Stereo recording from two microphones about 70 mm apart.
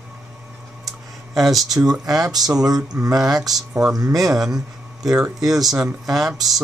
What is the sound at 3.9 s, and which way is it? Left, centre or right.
Speech, right.